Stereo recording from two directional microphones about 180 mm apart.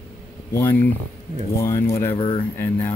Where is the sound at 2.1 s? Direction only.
25° left (ahead or behind).